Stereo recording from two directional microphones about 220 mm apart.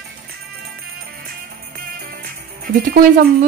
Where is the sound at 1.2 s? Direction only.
40° right (ahead or behind).